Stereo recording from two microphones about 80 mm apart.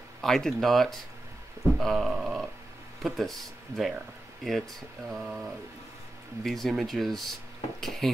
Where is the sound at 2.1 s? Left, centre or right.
Centre.